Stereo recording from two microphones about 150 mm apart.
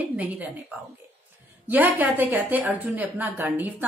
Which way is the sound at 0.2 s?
10° right (ahead or behind).